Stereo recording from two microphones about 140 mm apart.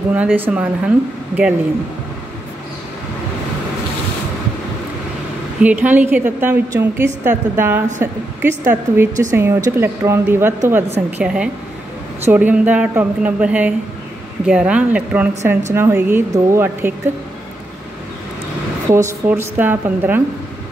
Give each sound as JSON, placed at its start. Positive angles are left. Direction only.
{"t": 0.1, "sound": "a woman's voice", "side_deg": -10}
{"t": 5.6, "sound": "a woman's voice", "side_deg": -10}
{"t": 19.2, "sound": "a woman's voice", "side_deg": -15}